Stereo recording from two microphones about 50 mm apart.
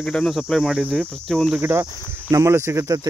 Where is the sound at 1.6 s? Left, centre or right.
Right.